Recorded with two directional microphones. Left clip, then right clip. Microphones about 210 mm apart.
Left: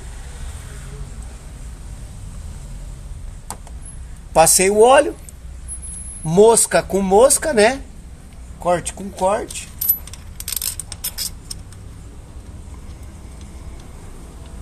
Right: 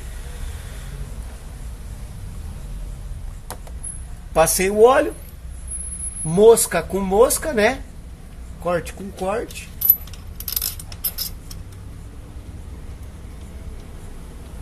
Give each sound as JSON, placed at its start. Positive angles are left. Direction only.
{"t": 4.3, "sound": "speech", "side_deg": 50}
{"t": 6.2, "sound": "speech", "side_deg": 45}